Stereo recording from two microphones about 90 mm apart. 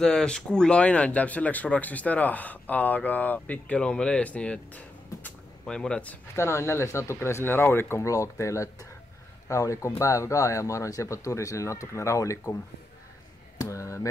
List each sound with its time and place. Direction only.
0.0 s speech: 5° left (ahead or behind)
6.3 s speech: 30° left (ahead or behind)
13.6 s a sound: 35° left (ahead or behind)